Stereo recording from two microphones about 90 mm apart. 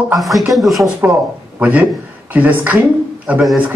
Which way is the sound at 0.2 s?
Centre (ahead or behind).